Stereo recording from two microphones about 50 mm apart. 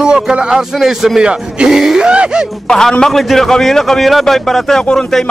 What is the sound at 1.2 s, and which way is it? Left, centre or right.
Speech, centre.